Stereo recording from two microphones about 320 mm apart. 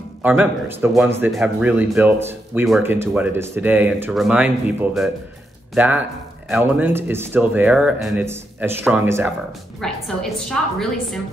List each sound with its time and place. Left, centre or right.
0.2 s speech: centre